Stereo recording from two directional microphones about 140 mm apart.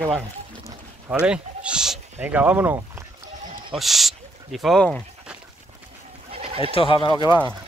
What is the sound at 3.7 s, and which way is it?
Speech, centre (ahead or behind).